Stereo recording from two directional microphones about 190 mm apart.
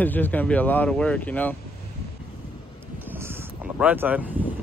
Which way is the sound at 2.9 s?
10° right (ahead or behind).